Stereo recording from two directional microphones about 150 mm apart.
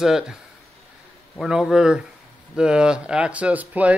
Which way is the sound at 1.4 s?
5° right (ahead or behind).